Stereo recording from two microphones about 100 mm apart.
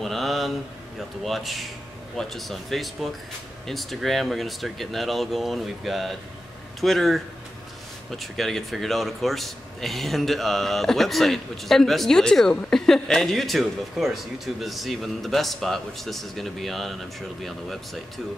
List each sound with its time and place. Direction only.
0.0 s mantra: centre (ahead or behind)
1.2 s a man's voice: centre (ahead or behind)